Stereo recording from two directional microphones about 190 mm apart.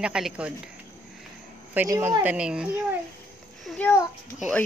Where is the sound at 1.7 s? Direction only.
10° right (ahead or behind).